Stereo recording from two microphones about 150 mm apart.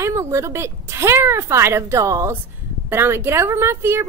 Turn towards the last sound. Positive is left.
turn(degrees=-15)  # may be behind; listen again after turning